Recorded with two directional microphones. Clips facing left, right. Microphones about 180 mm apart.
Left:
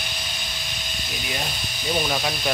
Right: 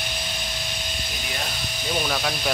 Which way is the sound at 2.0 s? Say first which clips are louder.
Left 1 dB; 10° left (ahead or behind).